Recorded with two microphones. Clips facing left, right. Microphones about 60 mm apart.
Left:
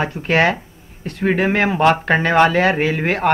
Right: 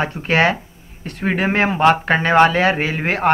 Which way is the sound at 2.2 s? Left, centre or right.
Right.